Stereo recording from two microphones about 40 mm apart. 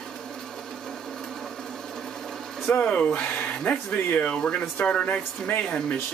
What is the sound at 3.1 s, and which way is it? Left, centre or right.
Speech, left.